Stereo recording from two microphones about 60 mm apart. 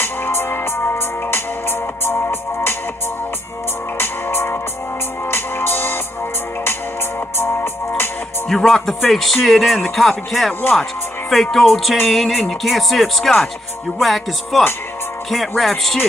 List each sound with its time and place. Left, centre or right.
0.0 s music: left
4.0 s music: left
8.5 s speech: centre
10.8 s music: centre
11.5 s speech: centre